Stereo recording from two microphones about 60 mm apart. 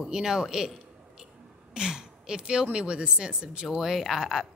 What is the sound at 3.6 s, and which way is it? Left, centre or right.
Speech, centre.